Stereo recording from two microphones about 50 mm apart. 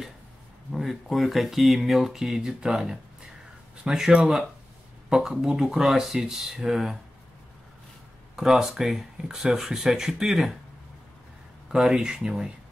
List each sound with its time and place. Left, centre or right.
0.7 s speech: centre
5.3 s speech: centre
8.4 s speech: centre
11.7 s speech: centre